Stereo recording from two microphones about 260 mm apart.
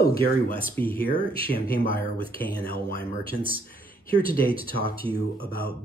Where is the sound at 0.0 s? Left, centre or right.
Left.